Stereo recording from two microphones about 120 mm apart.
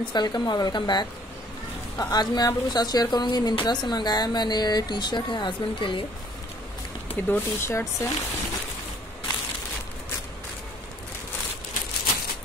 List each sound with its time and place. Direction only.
0.0 s a woman's voice: 35° left (ahead or behind)
7.1 s speech: 20° left (ahead or behind)